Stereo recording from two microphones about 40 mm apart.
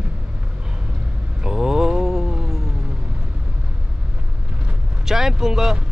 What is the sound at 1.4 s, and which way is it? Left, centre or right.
Mantra, centre.